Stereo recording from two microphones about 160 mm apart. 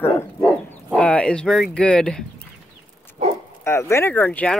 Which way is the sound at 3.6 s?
15° left (ahead or behind).